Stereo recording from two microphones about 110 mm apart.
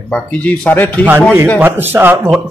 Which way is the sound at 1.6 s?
20° right (ahead or behind).